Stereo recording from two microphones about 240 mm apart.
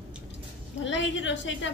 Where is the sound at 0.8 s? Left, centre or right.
Left.